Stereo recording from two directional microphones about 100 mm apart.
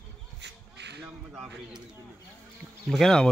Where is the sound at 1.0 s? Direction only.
Centre (ahead or behind).